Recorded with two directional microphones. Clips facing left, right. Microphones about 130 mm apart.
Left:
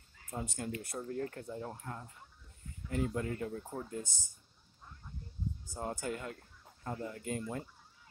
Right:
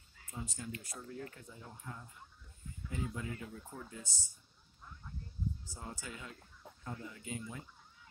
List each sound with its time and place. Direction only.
0.3 s speech: 60° left (ahead or behind)
5.7 s speech: 50° left (ahead or behind)